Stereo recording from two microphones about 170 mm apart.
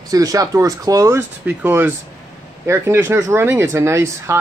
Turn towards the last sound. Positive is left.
turn(degrees=-15)  # may be behind; listen again after turning